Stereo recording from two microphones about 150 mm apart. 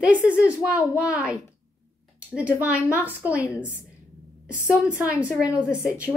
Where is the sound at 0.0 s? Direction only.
10° right (ahead or behind).